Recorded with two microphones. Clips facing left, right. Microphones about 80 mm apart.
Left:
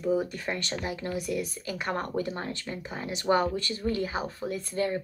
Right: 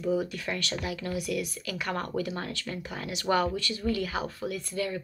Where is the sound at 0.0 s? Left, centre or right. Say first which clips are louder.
Left 1 dB; left.